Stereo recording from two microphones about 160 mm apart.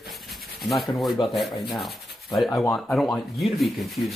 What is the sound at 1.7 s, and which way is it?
Sanding, centre (ahead or behind).